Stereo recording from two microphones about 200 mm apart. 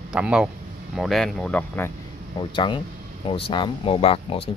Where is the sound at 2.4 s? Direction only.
25° left (ahead or behind).